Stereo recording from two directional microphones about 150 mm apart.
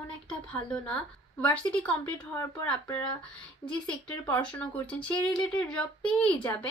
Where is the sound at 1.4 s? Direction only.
10° left (ahead or behind).